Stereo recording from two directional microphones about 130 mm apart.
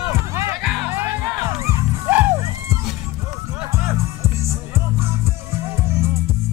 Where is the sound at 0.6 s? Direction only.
5° right (ahead or behind).